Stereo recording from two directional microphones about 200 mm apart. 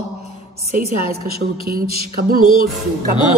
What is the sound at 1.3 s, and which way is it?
A woman's voice, 50° right (ahead or behind).